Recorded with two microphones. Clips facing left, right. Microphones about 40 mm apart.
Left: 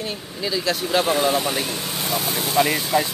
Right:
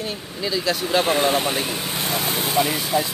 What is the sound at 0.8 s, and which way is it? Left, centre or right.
Speech, centre.